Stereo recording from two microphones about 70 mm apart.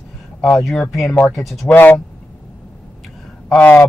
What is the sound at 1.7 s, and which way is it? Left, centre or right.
Speech, left.